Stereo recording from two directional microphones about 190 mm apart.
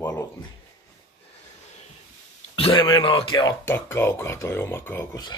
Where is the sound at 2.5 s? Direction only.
25° left (ahead or behind).